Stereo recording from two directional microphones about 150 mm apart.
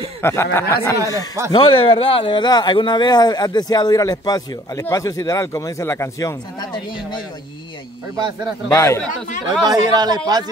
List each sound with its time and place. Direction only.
0.2 s speech: 15° left (ahead or behind)
1.5 s speech: 35° left (ahead or behind)
8.6 s speech: 20° left (ahead or behind)
9.7 s speech: 25° right (ahead or behind)